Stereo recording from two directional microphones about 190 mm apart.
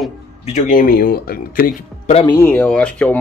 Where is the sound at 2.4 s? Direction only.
10° left (ahead or behind).